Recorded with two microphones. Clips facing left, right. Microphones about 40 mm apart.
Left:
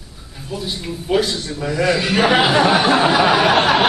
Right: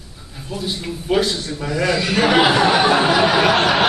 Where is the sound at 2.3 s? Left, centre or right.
Centre.